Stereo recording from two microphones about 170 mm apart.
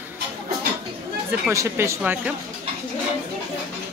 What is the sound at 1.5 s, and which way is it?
Speech, 15° right (ahead or behind).